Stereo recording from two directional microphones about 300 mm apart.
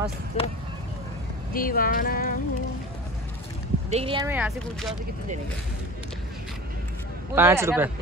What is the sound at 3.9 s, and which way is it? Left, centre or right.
Speech, centre.